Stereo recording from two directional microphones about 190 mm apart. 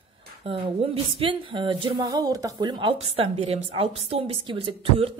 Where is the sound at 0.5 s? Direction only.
30° right (ahead or behind).